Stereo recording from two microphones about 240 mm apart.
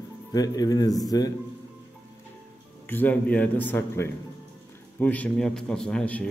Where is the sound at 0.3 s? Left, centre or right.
Centre.